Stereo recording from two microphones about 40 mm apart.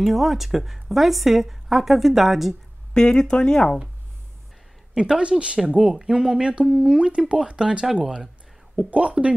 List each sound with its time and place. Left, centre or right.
0.0 s a woman's voice: centre
2.9 s speech: centre
4.9 s a woman's voice: centre
8.0 s speech: centre
8.7 s a woman's voice: right